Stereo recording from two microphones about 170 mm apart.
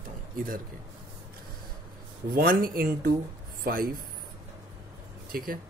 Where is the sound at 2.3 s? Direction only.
55° right (ahead or behind).